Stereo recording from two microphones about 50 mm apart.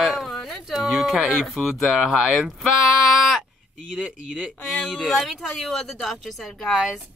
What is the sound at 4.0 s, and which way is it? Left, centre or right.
Speech, centre.